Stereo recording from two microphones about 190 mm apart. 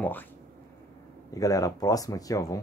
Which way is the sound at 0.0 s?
10° left (ahead or behind).